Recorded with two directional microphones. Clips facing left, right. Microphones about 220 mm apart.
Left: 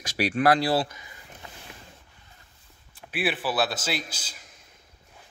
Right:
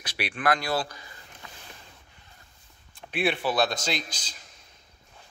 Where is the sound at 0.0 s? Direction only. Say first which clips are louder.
Left 6 dB; 45° left (ahead or behind); by 1.1 s 20° left (ahead or behind).